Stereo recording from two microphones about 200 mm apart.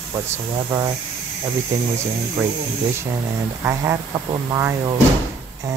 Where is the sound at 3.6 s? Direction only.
15° right (ahead or behind).